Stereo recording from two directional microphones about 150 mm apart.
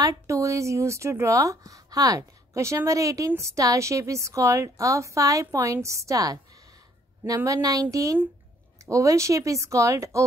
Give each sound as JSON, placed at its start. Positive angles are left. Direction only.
{"t": 0.0, "sound": "speech", "side_deg": -20}